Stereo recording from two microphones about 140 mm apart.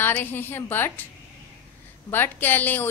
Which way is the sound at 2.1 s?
15° left (ahead or behind).